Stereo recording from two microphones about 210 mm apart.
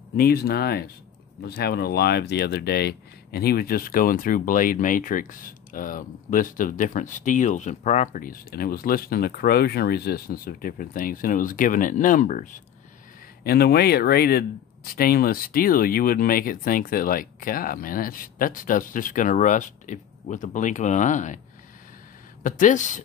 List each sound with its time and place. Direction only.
0.2 s speech: 50° left (ahead or behind)
22.4 s speech: 35° left (ahead or behind)